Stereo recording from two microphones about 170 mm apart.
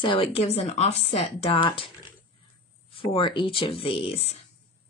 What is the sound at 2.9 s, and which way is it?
Speech, 30° left (ahead or behind).